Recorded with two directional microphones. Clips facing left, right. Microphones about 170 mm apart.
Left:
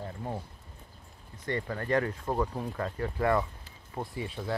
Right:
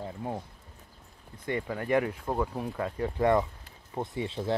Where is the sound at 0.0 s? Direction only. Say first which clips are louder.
Right 2 dB; 10° right (ahead or behind).